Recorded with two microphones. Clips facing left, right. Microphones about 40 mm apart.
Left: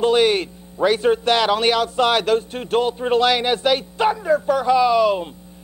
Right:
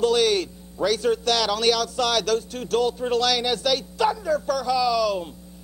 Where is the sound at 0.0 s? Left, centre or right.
Left.